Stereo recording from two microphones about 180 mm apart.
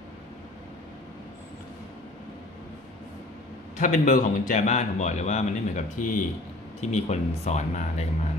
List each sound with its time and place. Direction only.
3.8 s a man's voice: 45° left (ahead or behind)